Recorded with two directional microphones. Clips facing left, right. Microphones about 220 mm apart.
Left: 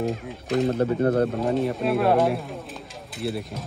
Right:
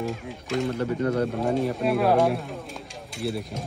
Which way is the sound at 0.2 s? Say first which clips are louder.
Left 4 dB; centre (ahead or behind).